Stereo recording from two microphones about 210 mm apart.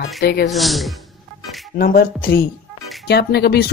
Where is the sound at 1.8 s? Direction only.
45° left (ahead or behind).